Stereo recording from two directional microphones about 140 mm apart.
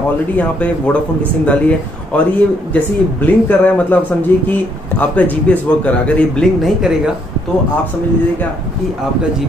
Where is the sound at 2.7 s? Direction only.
10° left (ahead or behind).